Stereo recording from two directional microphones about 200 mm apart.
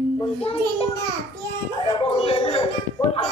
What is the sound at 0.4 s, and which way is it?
Speech, 30° left (ahead or behind).